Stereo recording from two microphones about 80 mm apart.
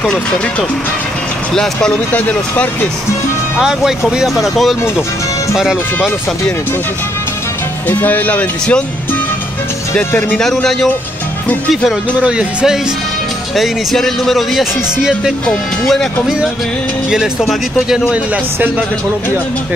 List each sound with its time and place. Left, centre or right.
0.0 s speech: centre
1.9 s speech: left
3.5 s speech: centre
7.9 s speech: left
10.3 s speech: centre
12.2 s speech: centre
13.6 s speech: centre
15.4 s speech: centre
17.1 s speech: centre
18.3 s speech: centre